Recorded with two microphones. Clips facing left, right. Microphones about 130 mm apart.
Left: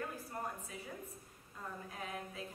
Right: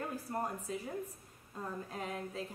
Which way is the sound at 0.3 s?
50° right (ahead or behind).